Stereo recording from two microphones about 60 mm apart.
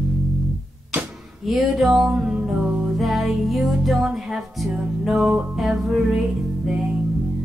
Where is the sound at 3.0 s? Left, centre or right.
Centre.